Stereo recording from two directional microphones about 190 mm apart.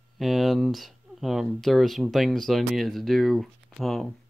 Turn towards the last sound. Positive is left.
turn(degrees=0)  # may be behind; listen again after turning